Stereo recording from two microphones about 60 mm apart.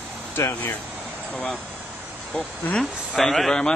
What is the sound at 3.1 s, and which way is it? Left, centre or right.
Speech, centre.